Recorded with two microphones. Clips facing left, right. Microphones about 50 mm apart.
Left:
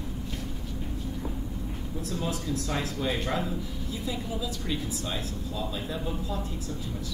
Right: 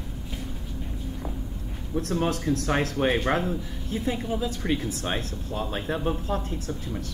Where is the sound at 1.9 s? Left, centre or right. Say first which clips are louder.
Right 7 dB; right.